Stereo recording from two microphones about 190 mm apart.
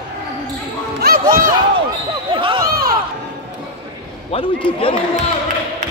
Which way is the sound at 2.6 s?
50° right (ahead or behind).